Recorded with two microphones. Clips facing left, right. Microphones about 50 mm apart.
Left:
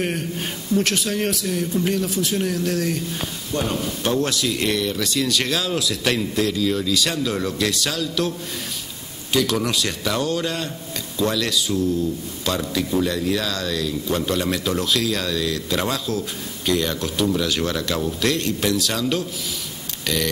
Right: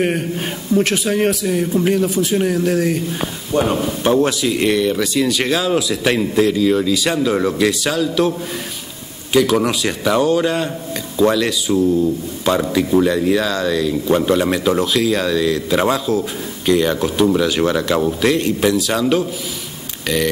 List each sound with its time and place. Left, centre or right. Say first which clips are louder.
0.0 s a man's voice: right 6 dB; centre
9.3 s a man's voice: right 6 dB; centre